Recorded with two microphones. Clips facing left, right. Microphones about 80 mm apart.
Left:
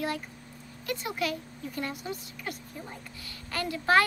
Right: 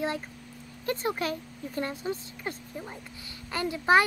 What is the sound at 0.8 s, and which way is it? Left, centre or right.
A woman's voice, right.